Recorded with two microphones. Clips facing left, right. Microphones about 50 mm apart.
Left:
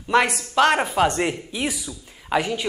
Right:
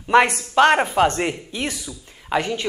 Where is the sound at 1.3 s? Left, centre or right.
Centre.